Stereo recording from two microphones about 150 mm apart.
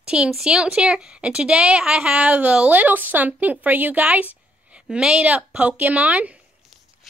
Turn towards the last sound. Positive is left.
turn(degrees=-10)  # may be behind; listen again after turning